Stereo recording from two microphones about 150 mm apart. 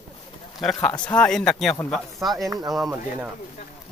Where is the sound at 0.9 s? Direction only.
30° left (ahead or behind).